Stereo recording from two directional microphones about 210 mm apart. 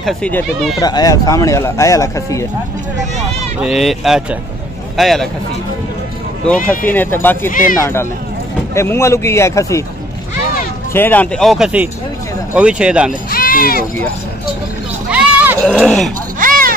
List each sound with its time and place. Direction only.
0.0 s speech: 5° left (ahead or behind)
0.7 s speech: 20° left (ahead or behind)
3.6 s speech: centre (ahead or behind)
6.7 s speech: 10° left (ahead or behind)
7.4 s speech: 40° left (ahead or behind)
7.8 s speech: 10° left (ahead or behind)
10.9 s speech: 10° left (ahead or behind)
13.3 s speech: 45° left (ahead or behind)
15.0 s sheep: 5° right (ahead or behind)
15.7 s speech: centre (ahead or behind)
16.3 s a sound: 40° right (ahead or behind)